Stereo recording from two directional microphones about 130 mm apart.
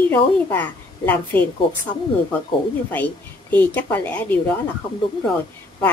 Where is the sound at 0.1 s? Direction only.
15° left (ahead or behind).